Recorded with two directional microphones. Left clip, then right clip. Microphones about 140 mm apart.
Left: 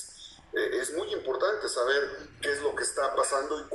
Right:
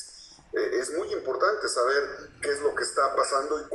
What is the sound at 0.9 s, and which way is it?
Speech, 25° left (ahead or behind).